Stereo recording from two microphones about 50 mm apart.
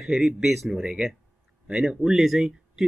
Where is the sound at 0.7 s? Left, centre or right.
Centre.